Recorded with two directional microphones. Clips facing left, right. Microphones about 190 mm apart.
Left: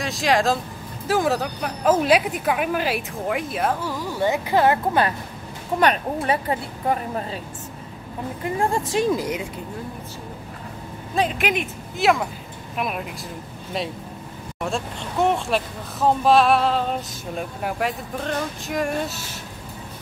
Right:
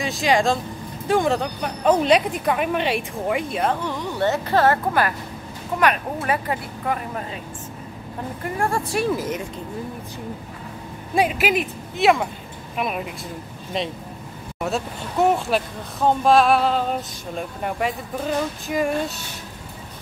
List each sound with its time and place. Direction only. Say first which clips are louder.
0.0 s speech: right 1 dB; centre (ahead or behind); by 7.2 s 30° left (ahead or behind)
8.5 s a woman's voice: left 1 dB; 15° left (ahead or behind)
11.1 s speech: right 2 dB; 5° right (ahead or behind)